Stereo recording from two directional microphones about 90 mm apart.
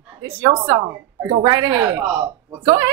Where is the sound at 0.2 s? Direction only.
25° right (ahead or behind).